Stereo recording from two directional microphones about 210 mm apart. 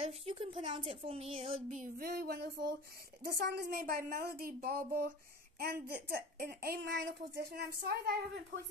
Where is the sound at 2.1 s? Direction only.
50° right (ahead or behind).